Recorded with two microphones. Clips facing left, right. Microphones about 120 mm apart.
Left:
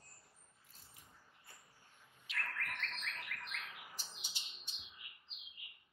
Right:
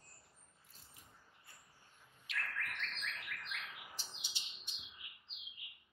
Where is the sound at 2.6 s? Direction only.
45° left (ahead or behind).